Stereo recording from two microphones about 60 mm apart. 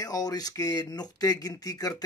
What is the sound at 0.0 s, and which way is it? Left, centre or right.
Speech, left.